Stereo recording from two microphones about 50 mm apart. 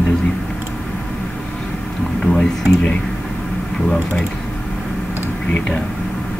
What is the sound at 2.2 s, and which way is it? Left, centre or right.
Speech, centre.